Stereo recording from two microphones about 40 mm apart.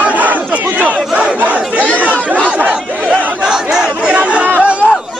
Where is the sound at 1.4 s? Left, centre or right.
Right.